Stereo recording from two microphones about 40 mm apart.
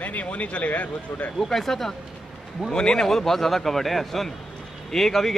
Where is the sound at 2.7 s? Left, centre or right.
Centre.